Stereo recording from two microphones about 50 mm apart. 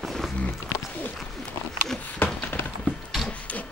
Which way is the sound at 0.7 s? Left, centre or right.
Left.